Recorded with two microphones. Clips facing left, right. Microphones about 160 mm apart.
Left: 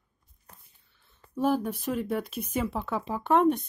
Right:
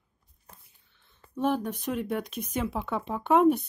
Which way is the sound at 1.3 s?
10° left (ahead or behind).